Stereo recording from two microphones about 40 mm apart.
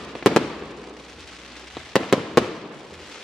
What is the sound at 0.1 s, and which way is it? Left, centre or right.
Fireworks, centre.